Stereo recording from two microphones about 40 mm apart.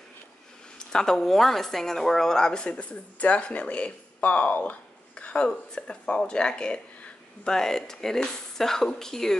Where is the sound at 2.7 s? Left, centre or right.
Left.